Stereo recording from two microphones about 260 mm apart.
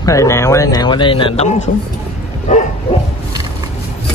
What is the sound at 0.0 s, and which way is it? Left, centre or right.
Speech, centre.